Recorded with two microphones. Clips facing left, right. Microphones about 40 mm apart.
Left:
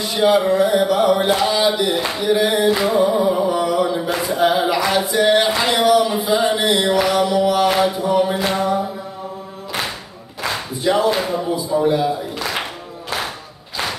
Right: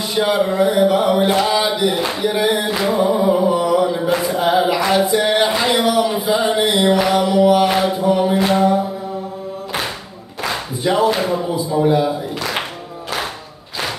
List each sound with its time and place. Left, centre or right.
0.1 s mantra: centre
3.4 s a sound: centre
5.6 s speech: centre
6.9 s mantra: centre
10.5 s speech: centre